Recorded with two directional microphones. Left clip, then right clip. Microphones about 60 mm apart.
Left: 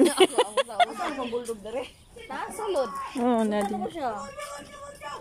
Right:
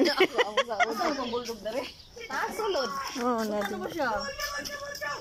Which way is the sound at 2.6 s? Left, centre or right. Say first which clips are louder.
Left 5 dB; left.